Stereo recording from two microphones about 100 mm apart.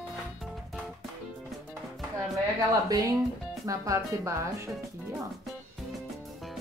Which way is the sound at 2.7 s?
40° right (ahead or behind).